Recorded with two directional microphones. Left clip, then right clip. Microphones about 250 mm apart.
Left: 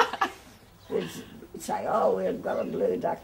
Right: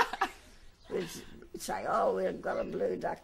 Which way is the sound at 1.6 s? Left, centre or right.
Right.